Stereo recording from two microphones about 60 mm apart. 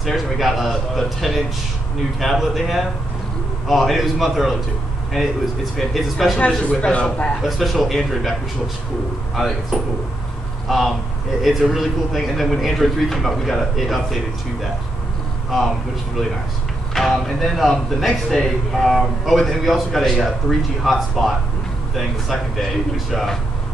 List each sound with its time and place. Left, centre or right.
0.0 s speech: centre
6.0 s speech: centre
6.6 s speech: left
7.4 s speech: centre
15.5 s speech: centre
16.9 s speech: centre